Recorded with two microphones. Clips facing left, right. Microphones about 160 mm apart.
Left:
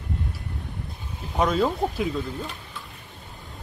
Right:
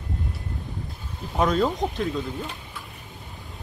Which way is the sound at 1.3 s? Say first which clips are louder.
Even; centre (ahead or behind).